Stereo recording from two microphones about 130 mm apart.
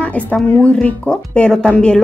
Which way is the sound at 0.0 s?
10° left (ahead or behind).